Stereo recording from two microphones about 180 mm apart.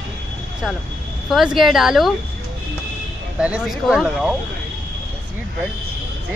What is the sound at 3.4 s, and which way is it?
Speech, 5° right (ahead or behind).